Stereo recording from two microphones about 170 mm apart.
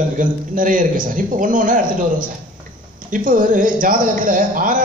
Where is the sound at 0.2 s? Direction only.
50° right (ahead or behind).